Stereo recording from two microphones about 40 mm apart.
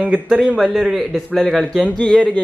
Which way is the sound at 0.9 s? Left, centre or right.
Centre.